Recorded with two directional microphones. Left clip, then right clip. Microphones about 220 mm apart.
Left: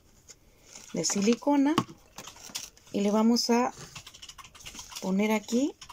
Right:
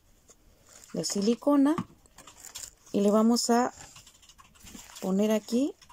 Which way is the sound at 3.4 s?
25° right (ahead or behind).